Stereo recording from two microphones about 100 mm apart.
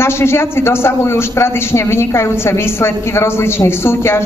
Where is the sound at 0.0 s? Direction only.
25° left (ahead or behind).